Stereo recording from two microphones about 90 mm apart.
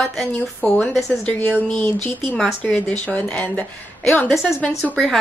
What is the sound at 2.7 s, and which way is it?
A woman's voice, 15° left (ahead or behind).